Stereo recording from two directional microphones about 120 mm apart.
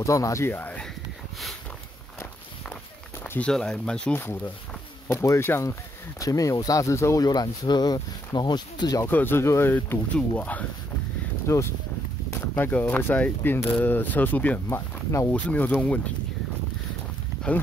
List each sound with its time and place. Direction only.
0.0 s speech: 25° left (ahead or behind)
3.3 s speech: 10° left (ahead or behind); by 9.0 s 35° left (ahead or behind)
9.0 s speech: 20° left (ahead or behind)
11.4 s speech: 25° left (ahead or behind)